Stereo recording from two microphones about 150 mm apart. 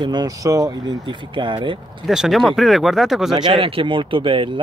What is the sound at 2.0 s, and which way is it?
Speech, centre (ahead or behind).